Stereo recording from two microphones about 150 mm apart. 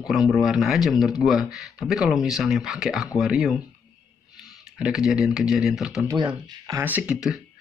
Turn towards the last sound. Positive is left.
turn(degrees=-5)  # may be behind; listen again after turning